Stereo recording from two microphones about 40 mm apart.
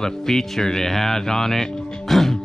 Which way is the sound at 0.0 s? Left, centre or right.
Centre.